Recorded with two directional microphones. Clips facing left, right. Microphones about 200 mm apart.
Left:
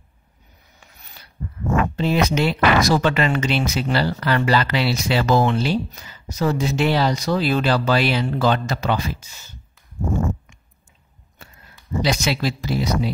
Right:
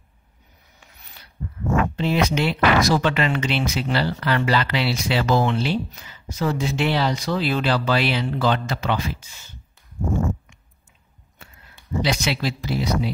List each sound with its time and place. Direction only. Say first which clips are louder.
2.0 s speech: left 2 dB; 40° left (ahead or behind)
11.3 s speech: left 2 dB; 40° left (ahead or behind)